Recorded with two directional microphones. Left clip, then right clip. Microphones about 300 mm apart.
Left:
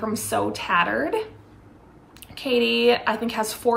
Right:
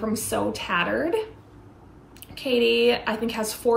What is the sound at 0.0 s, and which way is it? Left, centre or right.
Speech, centre.